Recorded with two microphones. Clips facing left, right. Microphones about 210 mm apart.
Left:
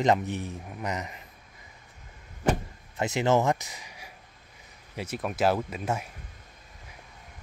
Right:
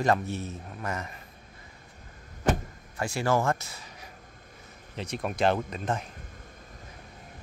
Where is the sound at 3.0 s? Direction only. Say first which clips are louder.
Left 3 dB; 20° left (ahead or behind).